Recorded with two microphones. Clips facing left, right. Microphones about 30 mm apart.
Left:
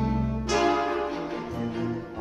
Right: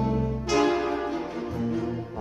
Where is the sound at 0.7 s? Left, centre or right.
Left.